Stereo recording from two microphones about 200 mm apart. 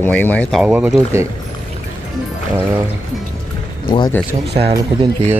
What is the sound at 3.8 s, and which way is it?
Speech, 25° left (ahead or behind).